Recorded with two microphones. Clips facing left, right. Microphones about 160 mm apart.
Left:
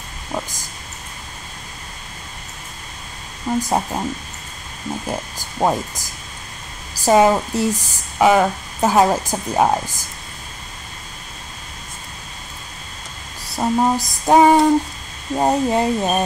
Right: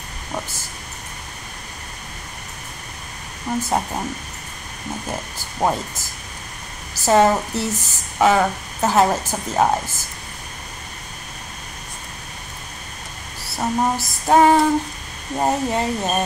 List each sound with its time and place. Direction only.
0.3 s speech: 15° left (ahead or behind)
3.6 s speech: 10° left (ahead or behind)
5.6 s speech: 10° left (ahead or behind)
13.6 s speech: 15° left (ahead or behind)